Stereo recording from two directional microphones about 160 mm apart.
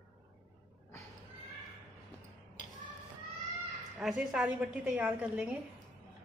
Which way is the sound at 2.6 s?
55° left (ahead or behind).